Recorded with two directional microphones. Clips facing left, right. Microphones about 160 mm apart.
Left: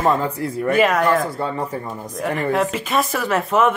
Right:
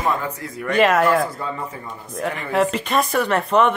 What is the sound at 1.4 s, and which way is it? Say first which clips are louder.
Speech: left 5 dB; 35° left (ahead or behind).